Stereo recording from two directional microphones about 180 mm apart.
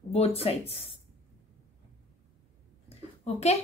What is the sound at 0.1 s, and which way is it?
Speech, 35° left (ahead or behind).